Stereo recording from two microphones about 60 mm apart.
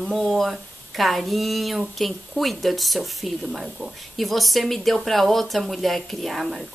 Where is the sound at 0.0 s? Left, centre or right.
Centre.